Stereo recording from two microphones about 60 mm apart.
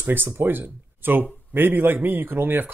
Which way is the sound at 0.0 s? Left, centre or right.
Right.